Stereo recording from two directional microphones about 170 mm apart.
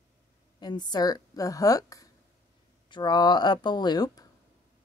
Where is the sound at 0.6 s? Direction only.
25° left (ahead or behind).